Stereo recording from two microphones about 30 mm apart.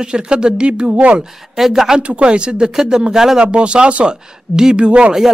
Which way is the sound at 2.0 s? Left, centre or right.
Right.